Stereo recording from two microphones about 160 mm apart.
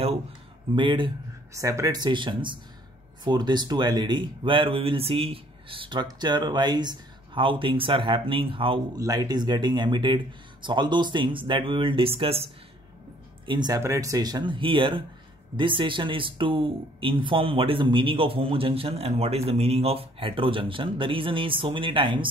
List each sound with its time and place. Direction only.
0.7 s speech: 30° right (ahead or behind)
1.5 s speech: 20° right (ahead or behind)
9.0 s speech: 25° right (ahead or behind)
13.5 s speech: 25° right (ahead or behind)